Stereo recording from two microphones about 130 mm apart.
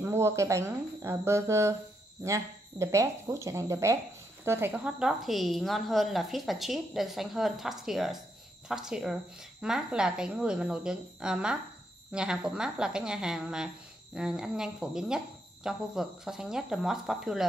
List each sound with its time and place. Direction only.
0.0 s a woman's voice: 20° right (ahead or behind); by 17.5 s centre (ahead or behind)